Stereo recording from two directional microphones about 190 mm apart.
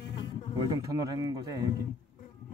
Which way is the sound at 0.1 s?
25° left (ahead or behind).